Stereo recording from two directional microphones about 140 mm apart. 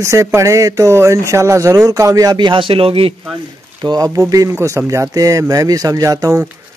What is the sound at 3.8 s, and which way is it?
Speech, 30° right (ahead or behind).